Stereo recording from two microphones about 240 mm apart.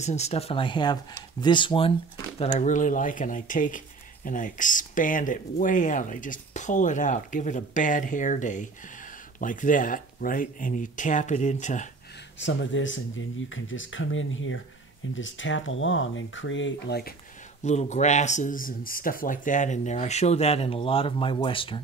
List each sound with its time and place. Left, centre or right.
0.0 s speech: left
12.4 s speech: left
17.6 s speech: left